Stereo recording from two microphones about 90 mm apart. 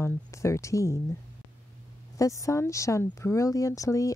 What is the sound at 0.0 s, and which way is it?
Speech, 35° left (ahead or behind).